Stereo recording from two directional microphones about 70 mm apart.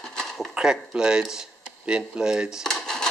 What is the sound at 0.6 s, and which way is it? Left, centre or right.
Speech, centre.